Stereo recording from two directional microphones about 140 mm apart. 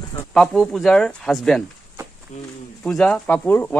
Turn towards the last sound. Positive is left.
turn(degrees=10)  # may be behind; listen again after turning